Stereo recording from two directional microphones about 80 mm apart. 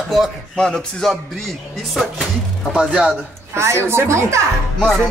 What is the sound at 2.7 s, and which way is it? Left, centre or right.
Speech, centre.